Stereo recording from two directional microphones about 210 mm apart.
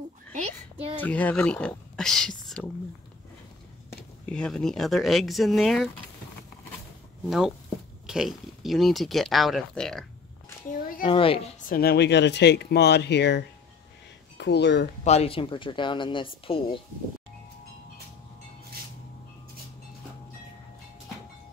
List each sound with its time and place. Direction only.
0.9 s speech: 5° left (ahead or behind)
4.3 s speech: 5° left (ahead or behind)
7.2 s speech: centre (ahead or behind)
11.0 s speech: 25° left (ahead or behind)
11.7 s speech: 50° left (ahead or behind)
14.4 s speech: 55° left (ahead or behind)
15.0 s speech: 30° left (ahead or behind)